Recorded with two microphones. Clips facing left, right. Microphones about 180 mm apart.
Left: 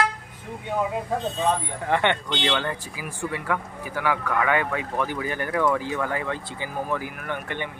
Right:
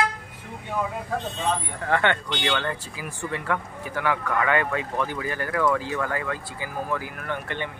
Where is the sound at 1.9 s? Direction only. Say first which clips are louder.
Even; 20° left (ahead or behind).